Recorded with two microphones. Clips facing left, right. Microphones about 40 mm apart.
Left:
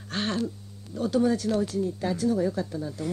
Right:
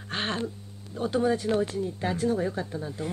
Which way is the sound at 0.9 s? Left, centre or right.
Right.